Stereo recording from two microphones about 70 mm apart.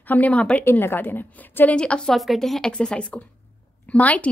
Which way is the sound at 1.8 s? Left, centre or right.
Centre.